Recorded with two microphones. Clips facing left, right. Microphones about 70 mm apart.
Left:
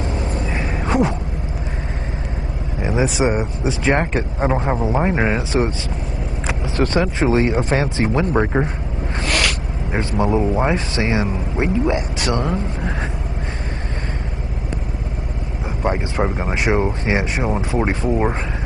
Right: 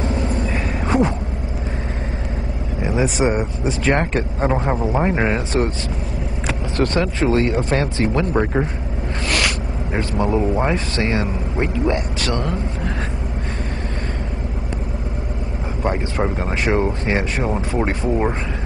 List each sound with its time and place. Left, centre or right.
0.8 s a sound: centre
3.0 s speech: centre
10.2 s speech: centre
12.2 s speech: centre
15.8 s speech: centre